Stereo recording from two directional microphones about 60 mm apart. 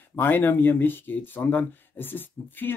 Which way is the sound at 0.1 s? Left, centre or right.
Left.